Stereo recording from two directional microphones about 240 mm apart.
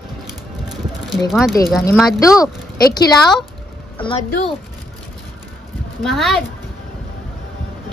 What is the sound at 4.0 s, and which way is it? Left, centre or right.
Speech, left.